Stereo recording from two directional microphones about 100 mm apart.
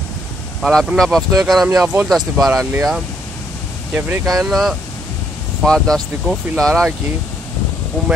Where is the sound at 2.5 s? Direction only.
25° right (ahead or behind).